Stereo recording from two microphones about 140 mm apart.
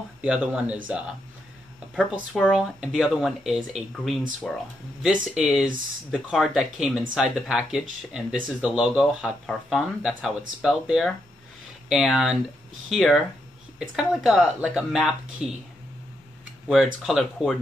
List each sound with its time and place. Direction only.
0.2 s speech: 10° right (ahead or behind)
2.4 s speech: 5° right (ahead or behind)
16.6 s speech: 5° right (ahead or behind)